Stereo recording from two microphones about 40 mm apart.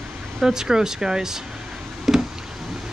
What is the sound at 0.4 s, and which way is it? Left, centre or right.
Speech, centre.